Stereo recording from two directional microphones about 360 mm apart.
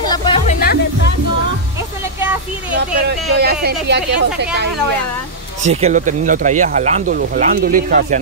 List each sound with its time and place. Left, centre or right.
0.0 s music: centre
3.1 s speech: right
5.6 s speech: centre